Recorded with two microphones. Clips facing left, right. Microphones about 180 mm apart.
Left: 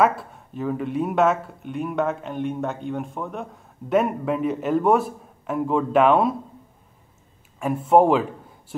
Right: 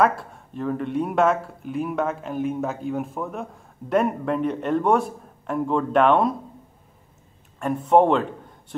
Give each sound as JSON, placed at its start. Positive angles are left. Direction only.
{"t": 0.0, "sound": "speech", "side_deg": 0}
{"t": 7.5, "sound": "a man's voice", "side_deg": 5}